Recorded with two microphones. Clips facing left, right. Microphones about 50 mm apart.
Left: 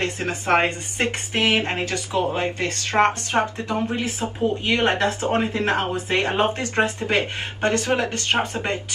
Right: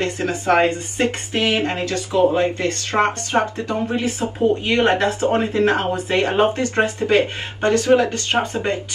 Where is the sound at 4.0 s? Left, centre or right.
Left.